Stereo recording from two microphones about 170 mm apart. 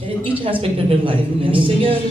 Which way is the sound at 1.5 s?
30° right (ahead or behind).